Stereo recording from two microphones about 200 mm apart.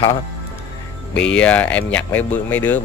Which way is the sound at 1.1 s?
5° left (ahead or behind).